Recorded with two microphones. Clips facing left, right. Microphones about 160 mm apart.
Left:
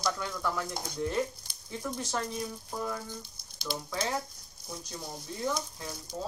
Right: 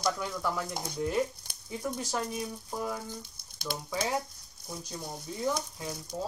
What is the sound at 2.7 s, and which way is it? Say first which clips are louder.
Speech: right 1 dB; 10° right (ahead or behind).